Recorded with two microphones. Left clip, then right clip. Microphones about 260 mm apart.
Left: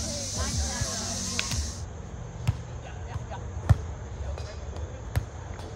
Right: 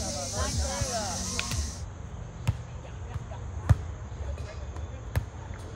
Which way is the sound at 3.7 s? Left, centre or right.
Centre.